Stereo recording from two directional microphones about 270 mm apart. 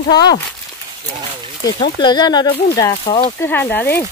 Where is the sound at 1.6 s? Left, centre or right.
Centre.